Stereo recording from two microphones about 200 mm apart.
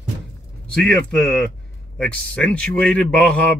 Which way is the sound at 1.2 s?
5° left (ahead or behind).